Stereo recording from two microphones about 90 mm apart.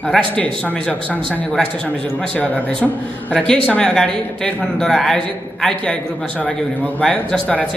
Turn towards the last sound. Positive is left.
turn(degrees=15)  # may be behind; listen again after turning